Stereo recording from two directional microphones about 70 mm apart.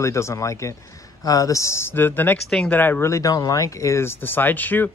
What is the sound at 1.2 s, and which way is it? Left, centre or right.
Speech, left.